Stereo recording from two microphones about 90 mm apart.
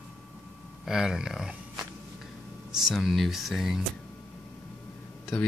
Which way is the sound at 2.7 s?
5° right (ahead or behind).